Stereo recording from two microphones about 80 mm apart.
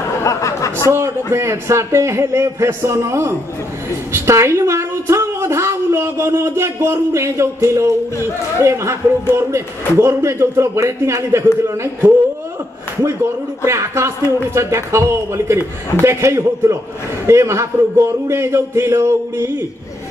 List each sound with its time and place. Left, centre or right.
0.2 s a sound: left
0.9 s a woman's voice: right
9.9 s a woman's voice: right
13.7 s a woman's voice: right